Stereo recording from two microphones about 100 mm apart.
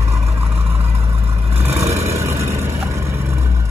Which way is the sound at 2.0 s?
30° right (ahead or behind).